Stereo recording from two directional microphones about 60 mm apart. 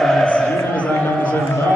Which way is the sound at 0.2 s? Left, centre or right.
Centre.